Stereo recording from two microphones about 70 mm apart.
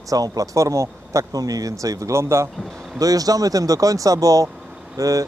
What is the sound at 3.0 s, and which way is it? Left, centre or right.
Speech, right.